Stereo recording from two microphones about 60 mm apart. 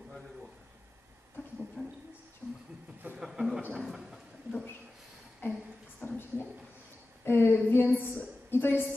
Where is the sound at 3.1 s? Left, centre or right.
Centre.